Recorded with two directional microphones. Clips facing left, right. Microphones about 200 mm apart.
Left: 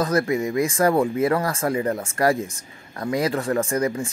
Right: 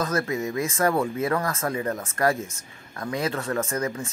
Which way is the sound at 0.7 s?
35° left (ahead or behind).